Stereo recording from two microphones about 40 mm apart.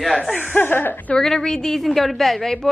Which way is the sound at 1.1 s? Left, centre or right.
Centre.